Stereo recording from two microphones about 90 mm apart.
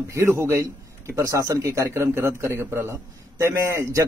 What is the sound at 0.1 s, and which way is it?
A man's voice, 30° right (ahead or behind).